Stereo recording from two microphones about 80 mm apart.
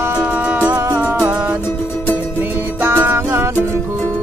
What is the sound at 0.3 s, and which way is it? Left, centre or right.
Music, centre.